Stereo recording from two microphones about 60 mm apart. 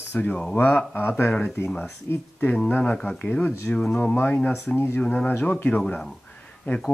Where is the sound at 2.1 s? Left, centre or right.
Left.